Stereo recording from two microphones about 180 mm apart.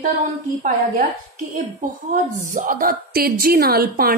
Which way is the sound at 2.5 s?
50° right (ahead or behind).